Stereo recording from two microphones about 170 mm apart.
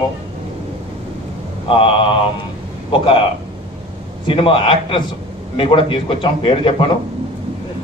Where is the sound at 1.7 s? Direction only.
30° left (ahead or behind).